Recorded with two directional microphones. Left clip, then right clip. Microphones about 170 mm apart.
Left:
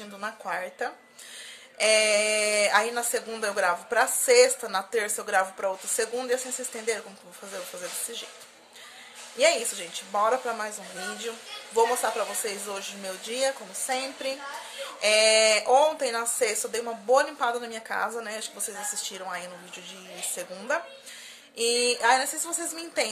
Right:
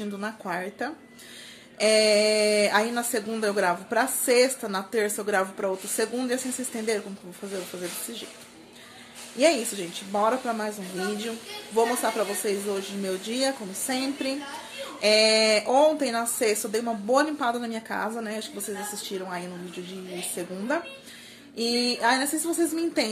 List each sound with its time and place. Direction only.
0.2 s speech: 5° left (ahead or behind)
9.4 s speech: 10° left (ahead or behind)